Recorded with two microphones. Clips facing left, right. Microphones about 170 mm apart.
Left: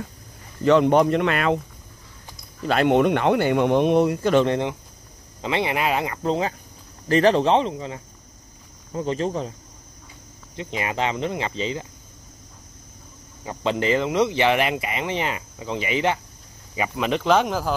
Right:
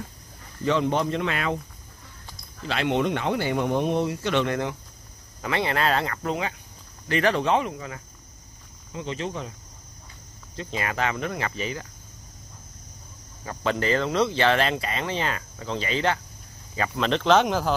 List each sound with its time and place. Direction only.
0.7 s speech: 60° left (ahead or behind)
2.6 s speech: 50° left (ahead or behind)
3.6 s speech: 80° left; by 4.3 s 60° left (ahead or behind)
4.3 s speech: 40° left (ahead or behind)
5.4 s speech: 20° left (ahead or behind)
6.2 s cricket: 30° left (ahead or behind)
8.9 s speech: 40° left (ahead or behind)
10.5 s cricket: 20° left (ahead or behind)
13.5 s speech: 20° left (ahead or behind)